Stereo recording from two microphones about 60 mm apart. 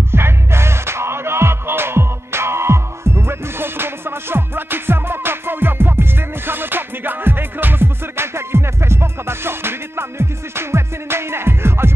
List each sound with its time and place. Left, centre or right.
0.1 s music: right